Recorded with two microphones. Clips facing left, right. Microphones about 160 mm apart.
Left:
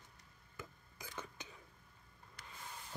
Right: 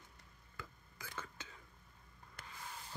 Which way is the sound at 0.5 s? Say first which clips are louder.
Left 1 dB; 15° left (ahead or behind).